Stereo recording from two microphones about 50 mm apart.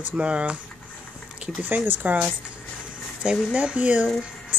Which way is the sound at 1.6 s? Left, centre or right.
Right.